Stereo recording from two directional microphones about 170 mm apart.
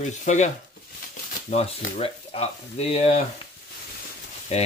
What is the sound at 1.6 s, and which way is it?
Speech, 35° left (ahead or behind).